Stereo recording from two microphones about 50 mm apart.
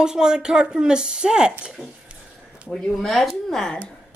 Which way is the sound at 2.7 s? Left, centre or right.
Centre.